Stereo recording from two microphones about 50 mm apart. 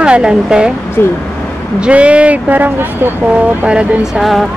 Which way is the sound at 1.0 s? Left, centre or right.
Left.